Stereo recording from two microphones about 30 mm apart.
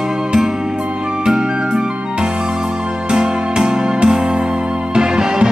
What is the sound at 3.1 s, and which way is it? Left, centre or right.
Music, right.